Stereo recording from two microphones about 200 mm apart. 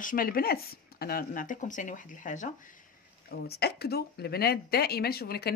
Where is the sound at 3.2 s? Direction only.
50° left (ahead or behind).